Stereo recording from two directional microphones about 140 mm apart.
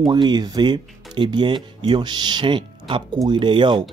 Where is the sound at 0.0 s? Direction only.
30° right (ahead or behind).